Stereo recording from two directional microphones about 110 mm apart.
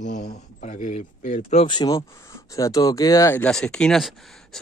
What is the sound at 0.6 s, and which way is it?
Speech, 90° left.